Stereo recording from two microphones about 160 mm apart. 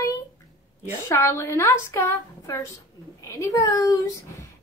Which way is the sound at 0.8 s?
15° left (ahead or behind).